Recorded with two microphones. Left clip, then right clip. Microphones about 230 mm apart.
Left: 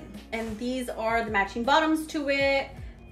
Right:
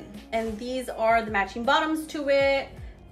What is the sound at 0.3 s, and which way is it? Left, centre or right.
A woman's voice, centre.